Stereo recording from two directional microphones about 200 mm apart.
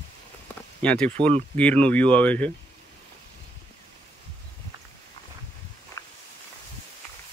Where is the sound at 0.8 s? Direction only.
5° left (ahead or behind).